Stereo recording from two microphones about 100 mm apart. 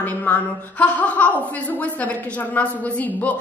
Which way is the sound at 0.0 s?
15° left (ahead or behind).